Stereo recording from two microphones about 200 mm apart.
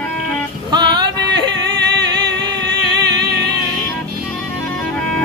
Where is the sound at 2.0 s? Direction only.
20° right (ahead or behind).